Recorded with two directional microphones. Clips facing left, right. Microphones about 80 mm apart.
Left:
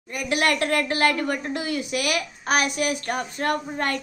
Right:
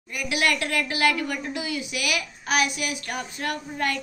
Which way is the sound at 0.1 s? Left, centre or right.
Left.